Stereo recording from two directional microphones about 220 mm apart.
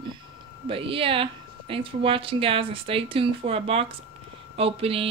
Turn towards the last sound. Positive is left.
turn(degrees=-25)  # may be behind; listen again after turning